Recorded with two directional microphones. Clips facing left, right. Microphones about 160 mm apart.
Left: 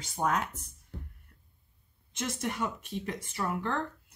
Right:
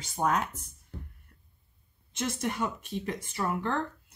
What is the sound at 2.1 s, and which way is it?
Speech, 30° right (ahead or behind).